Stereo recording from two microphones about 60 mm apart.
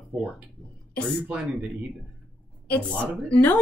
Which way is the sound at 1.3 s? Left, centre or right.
Centre.